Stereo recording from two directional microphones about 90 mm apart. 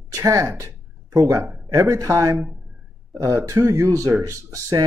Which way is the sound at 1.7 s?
35° right (ahead or behind).